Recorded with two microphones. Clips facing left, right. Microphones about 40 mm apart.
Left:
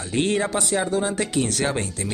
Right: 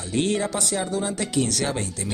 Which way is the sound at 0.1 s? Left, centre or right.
Left.